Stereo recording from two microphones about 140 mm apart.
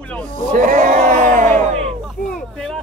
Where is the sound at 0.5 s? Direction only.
70° right (ahead or behind).